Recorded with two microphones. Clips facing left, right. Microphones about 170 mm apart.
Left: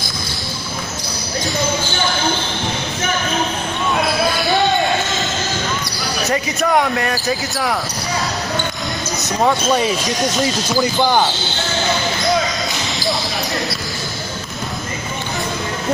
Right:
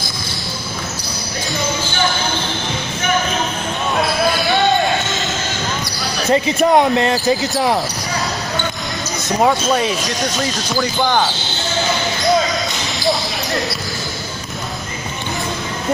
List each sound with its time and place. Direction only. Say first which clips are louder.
6.3 s speech: right 5 dB; 25° right (ahead or behind)
9.5 s speech: even; centre (ahead or behind)